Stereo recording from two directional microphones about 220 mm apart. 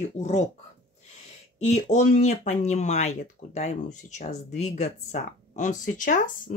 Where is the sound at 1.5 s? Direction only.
30° left (ahead or behind).